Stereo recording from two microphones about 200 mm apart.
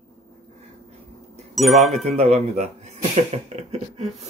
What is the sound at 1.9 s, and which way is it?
Speech, 35° right (ahead or behind).